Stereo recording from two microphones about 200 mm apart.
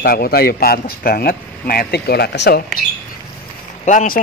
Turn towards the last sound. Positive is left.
turn(degrees=40)  # may be behind; listen again after turning